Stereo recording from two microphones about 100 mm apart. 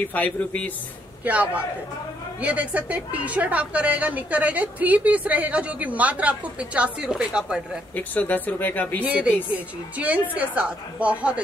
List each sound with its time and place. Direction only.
0.0 s speech: 15° left (ahead or behind)
1.2 s a woman's voice: 15° right (ahead or behind)
7.9 s speech: 15° left (ahead or behind)
9.0 s a woman's voice: 15° right (ahead or behind)